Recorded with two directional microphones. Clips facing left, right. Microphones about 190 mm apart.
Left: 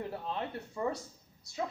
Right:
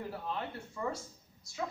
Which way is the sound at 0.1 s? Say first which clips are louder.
Left 2 dB; 20° left (ahead or behind).